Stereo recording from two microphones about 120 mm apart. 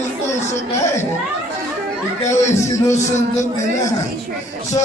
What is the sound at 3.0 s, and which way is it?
Speech, 75° left (ahead or behind).